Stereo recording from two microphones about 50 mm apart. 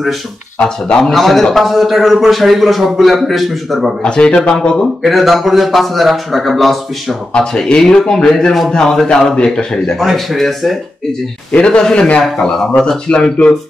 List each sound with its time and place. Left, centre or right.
0.6 s speech: centre
1.1 s a man's voice: centre
4.0 s speech: centre
5.0 s a man's voice: centre
7.3 s speech: centre
9.9 s a man's voice: centre
11.5 s speech: centre